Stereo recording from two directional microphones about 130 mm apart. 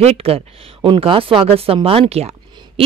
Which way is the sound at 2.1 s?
50° right (ahead or behind).